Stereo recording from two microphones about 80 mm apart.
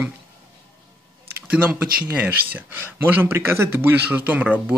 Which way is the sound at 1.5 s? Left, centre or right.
Centre.